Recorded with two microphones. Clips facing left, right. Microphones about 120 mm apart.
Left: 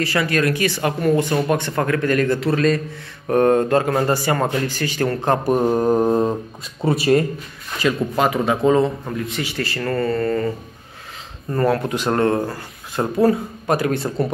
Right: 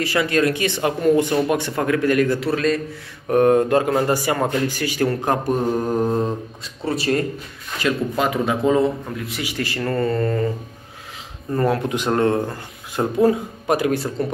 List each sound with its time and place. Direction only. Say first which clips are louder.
0.0 s speech: right 1 dB; 15° right (ahead or behind)
5.9 s mantra: left 4 dB; 30° left (ahead or behind)
6.8 s speech: left 4 dB; 15° left (ahead or behind); by 10.5 s 15° right (ahead or behind)
11.5 s speech: left 1 dB; 15° right (ahead or behind)